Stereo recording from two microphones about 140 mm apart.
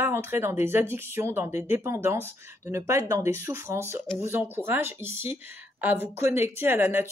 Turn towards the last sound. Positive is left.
turn(degrees=-15)  # may be behind; listen again after turning